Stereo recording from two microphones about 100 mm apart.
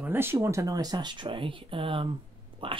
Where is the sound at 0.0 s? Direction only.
20° right (ahead or behind).